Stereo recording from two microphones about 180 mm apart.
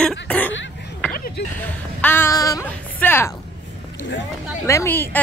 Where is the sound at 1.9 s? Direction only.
10° left (ahead or behind).